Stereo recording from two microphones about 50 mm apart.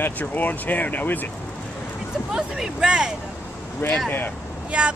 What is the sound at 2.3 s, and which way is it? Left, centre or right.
Speech, centre.